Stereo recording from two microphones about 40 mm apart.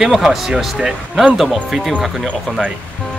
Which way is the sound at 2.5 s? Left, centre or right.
Left.